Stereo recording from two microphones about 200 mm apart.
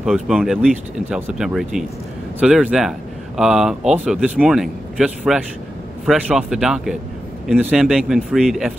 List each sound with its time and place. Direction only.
0.0 s speech: centre (ahead or behind)